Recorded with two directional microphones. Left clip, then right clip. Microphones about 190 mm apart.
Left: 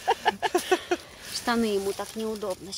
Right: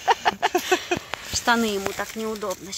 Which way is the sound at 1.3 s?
5° right (ahead or behind).